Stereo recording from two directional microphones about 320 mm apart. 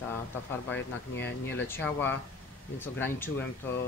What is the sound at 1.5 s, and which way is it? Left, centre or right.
Speech, centre.